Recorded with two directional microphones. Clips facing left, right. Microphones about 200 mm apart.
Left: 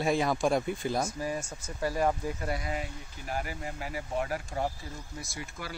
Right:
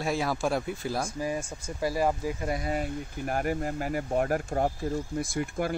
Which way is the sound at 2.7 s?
50° right (ahead or behind).